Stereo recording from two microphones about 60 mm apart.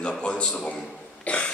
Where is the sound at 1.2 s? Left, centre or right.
Left.